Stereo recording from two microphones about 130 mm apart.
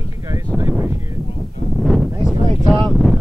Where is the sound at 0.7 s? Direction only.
15° right (ahead or behind).